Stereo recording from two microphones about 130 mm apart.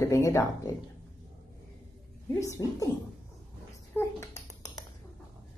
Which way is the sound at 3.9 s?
20° left (ahead or behind).